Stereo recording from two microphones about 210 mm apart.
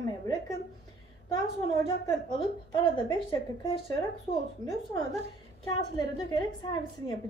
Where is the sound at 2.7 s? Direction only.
25° left (ahead or behind).